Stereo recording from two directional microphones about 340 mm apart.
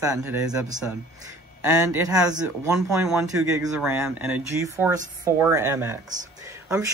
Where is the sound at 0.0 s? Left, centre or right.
Centre.